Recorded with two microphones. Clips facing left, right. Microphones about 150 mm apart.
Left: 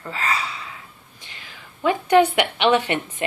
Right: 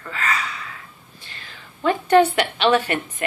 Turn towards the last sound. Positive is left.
turn(degrees=20)  # may be behind; listen again after turning